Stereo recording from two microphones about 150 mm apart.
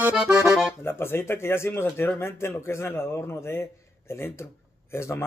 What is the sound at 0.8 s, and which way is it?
Speech, 15° left (ahead or behind).